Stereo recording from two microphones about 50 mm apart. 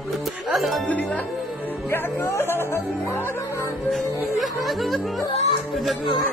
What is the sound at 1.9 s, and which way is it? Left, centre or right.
Music, left.